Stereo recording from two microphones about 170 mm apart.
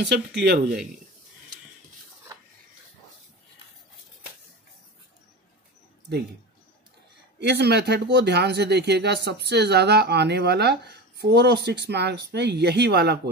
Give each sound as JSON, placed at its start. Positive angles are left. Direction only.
{"t": 0.0, "sound": "speech", "side_deg": -75}
{"t": 7.3, "sound": "speech", "side_deg": -75}